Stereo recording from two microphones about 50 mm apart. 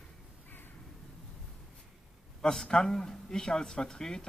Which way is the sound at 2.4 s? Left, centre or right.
Centre.